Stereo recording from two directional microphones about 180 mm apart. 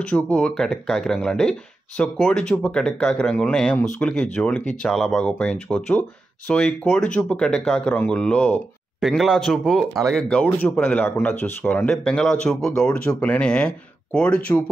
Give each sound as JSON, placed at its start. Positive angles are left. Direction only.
{"t": 0.0, "sound": "speech", "side_deg": 5}